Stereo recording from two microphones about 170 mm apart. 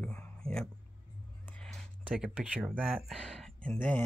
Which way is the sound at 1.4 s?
5° left (ahead or behind).